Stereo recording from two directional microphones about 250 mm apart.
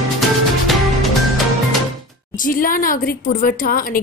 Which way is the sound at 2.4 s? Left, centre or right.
Left.